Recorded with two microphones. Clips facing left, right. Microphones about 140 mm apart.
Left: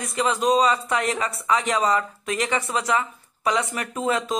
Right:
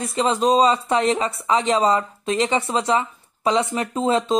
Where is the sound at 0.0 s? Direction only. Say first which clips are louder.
Right 3 dB; 30° right (ahead or behind).